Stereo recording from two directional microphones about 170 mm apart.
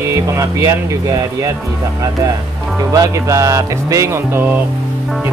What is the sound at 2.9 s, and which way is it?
Music, 20° right (ahead or behind).